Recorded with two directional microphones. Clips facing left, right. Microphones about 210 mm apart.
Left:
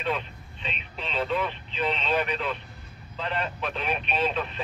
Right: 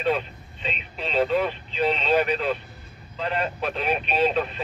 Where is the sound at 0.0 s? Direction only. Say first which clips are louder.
Right 6 dB; 40° right (ahead or behind).